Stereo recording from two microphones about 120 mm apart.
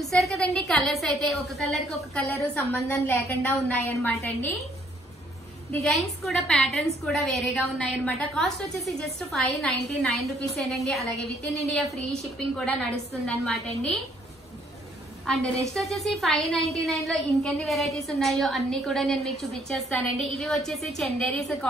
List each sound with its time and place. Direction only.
0.0 s a woman's voice: centre (ahead or behind)
2.5 s a woman's voice: 15° left (ahead or behind)
5.8 s a woman's voice: centre (ahead or behind)
15.7 s a woman's voice: centre (ahead or behind)